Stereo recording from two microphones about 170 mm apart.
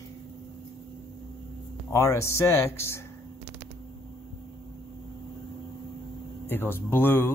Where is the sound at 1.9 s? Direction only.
15° left (ahead or behind).